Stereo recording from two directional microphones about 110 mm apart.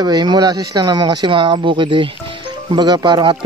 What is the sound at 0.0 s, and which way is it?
Speech, 40° right (ahead or behind).